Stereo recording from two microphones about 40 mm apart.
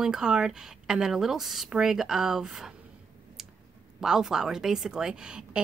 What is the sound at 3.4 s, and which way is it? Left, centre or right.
Clicking, centre.